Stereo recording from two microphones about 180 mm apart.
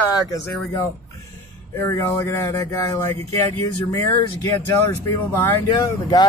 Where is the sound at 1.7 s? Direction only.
15° left (ahead or behind).